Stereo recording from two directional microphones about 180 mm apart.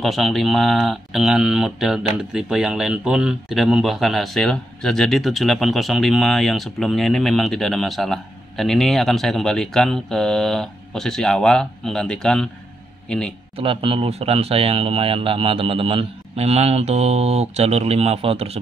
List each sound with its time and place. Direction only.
0.0 s speech: centre (ahead or behind)
13.6 s speech: 30° right (ahead or behind)